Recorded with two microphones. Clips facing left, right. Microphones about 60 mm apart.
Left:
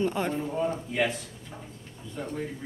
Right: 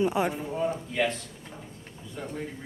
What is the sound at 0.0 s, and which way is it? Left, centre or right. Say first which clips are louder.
Speech: right 2 dB; centre.